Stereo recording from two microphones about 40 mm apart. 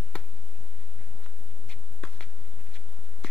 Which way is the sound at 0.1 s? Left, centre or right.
Left.